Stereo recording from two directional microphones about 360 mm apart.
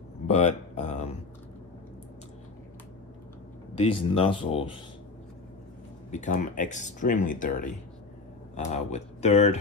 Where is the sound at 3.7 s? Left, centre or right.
Centre.